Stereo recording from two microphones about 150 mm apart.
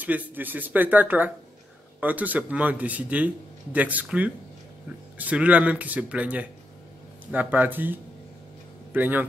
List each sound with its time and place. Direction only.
0.0 s speech: 10° right (ahead or behind)